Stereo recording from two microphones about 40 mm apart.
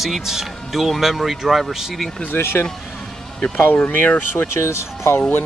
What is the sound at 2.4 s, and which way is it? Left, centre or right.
Speech, left.